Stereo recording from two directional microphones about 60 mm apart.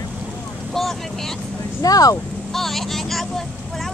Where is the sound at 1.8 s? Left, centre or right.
Left.